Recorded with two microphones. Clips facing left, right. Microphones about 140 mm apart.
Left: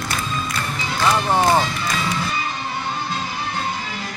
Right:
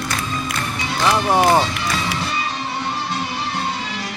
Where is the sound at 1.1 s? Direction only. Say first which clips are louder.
Right 2 dB; 10° right (ahead or behind).